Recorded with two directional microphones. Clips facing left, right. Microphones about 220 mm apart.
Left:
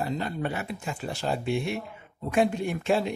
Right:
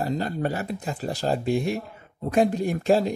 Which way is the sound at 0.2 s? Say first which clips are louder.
Right 4 dB; 40° right (ahead or behind).